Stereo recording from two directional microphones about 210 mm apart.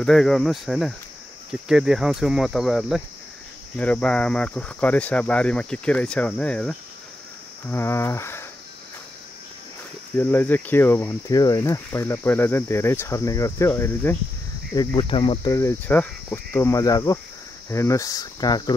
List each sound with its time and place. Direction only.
0.0 s speech: centre (ahead or behind)
10.1 s speech: 10° left (ahead or behind); by 15.5 s 25° left (ahead or behind)
15.5 s speech: 10° left (ahead or behind)